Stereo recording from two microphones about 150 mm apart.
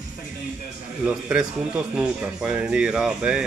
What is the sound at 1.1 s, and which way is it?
Speech, 5° right (ahead or behind).